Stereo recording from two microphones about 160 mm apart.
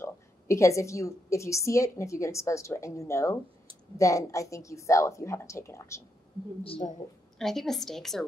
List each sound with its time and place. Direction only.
0.0 s a woman's voice: 20° left (ahead or behind)
7.3 s a woman's voice: centre (ahead or behind)